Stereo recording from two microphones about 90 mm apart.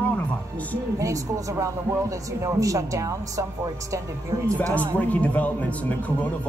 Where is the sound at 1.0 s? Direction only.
35° right (ahead or behind).